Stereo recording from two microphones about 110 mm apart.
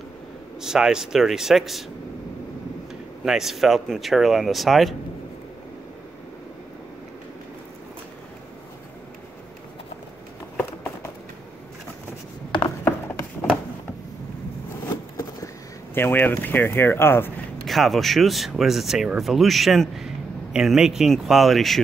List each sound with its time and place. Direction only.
0.6 s speech: 5° right (ahead or behind)
3.3 s speech: 5° right (ahead or behind)
15.1 s a sound: 25° left (ahead or behind)
17.6 s speech: centre (ahead or behind)